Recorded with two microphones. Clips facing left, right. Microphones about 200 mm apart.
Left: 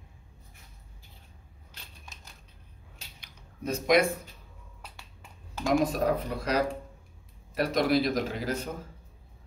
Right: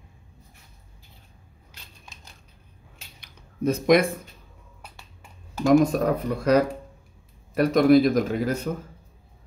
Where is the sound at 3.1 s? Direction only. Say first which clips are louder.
Right 13 dB; 50° right (ahead or behind).